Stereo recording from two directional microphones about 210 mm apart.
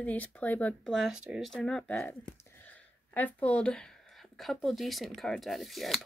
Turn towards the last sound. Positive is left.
turn(degrees=0)  # may be behind; listen again after turning